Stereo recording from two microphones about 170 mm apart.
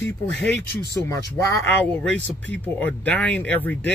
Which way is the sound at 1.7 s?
5° left (ahead or behind).